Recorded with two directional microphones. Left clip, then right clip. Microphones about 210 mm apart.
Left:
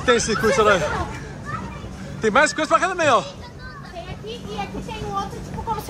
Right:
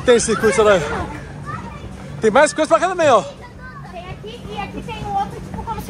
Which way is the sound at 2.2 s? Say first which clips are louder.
Right 4 dB; 10° left (ahead or behind).